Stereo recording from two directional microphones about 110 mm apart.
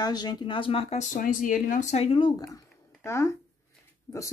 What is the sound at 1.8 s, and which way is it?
Speech, 80° left.